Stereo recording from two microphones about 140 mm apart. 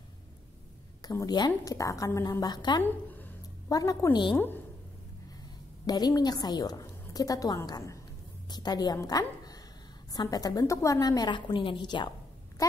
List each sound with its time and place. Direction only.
1.0 s a woman's voice: 25° left (ahead or behind)
2.8 s a sound: 15° left (ahead or behind)
3.6 s a woman's voice: 25° left (ahead or behind)
5.9 s a woman's voice: 30° left (ahead or behind)